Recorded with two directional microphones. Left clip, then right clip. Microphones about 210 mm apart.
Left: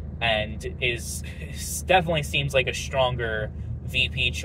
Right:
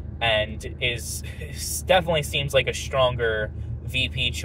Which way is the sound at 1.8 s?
25° right (ahead or behind).